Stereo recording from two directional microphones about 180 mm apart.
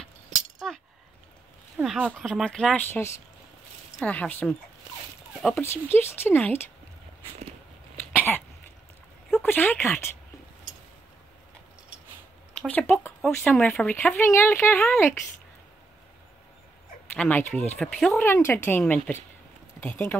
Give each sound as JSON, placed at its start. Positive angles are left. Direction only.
{"t": 0.3, "sound": "chink", "side_deg": -45}
{"t": 1.8, "sound": "speech", "side_deg": 0}
{"t": 9.4, "sound": "speech", "side_deg": 10}
{"t": 12.5, "sound": "speech", "side_deg": 10}
{"t": 17.1, "sound": "speech", "side_deg": 10}